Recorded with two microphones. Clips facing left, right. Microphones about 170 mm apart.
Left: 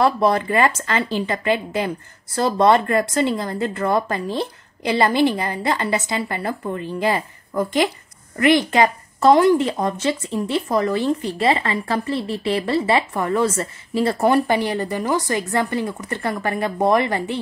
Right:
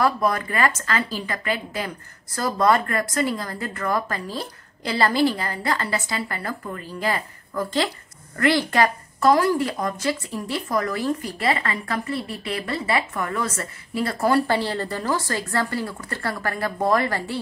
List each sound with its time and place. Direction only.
0.0 s speech: 25° left (ahead or behind)